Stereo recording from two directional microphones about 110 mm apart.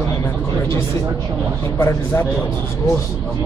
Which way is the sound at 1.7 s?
25° left (ahead or behind).